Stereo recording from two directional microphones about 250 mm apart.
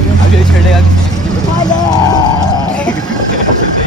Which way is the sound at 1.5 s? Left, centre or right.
Centre.